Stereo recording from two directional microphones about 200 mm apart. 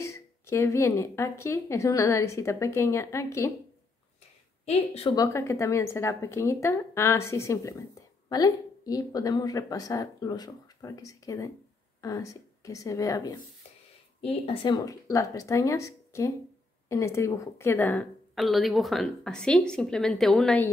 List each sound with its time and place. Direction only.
0.0 s speech: 15° left (ahead or behind)
4.6 s a woman's voice: 30° left (ahead or behind)
5.1 s speech: 15° left (ahead or behind)
14.2 s a woman's voice: 30° left (ahead or behind); by 20.7 s 5° left (ahead or behind)